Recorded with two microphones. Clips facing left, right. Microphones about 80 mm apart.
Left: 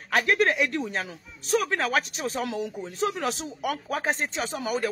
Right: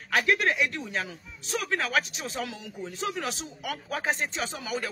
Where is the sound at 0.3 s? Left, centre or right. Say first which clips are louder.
Left 3 dB; left.